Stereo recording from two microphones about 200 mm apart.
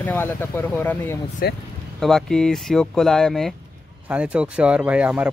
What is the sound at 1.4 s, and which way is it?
Speech, 50° left (ahead or behind).